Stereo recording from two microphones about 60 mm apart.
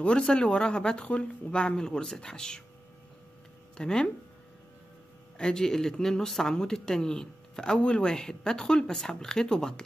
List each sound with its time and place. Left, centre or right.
0.0 s speech: centre
3.7 s speech: centre
5.4 s speech: centre